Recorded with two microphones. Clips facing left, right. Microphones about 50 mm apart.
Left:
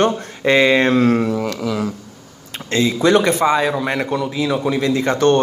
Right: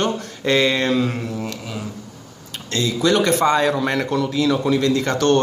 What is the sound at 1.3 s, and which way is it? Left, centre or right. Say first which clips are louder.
Speech: left 7 dB; left.